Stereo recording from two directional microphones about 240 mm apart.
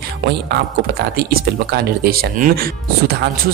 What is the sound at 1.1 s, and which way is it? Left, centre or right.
Speech, right.